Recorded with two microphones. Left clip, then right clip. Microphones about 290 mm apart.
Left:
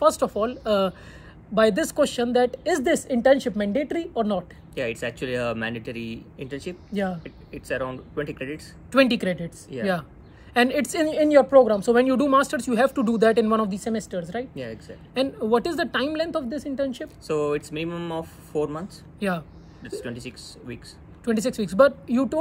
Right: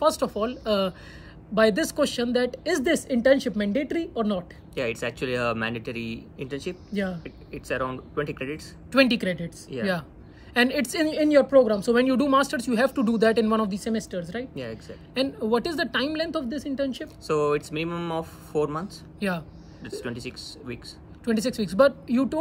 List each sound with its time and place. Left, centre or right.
0.0 s a woman's voice: centre
4.7 s speech: centre
6.9 s a woman's voice: centre
7.2 s speech: centre
8.9 s a woman's voice: centre
9.7 s speech: centre
10.5 s a woman's voice: centre
14.5 s speech: centre
15.1 s a woman's voice: centre
17.3 s speech: centre
19.1 s speech: centre
20.0 s speech: centre
21.2 s a woman's voice: centre